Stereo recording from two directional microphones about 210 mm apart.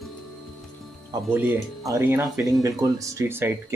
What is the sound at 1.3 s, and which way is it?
Speech, 10° right (ahead or behind).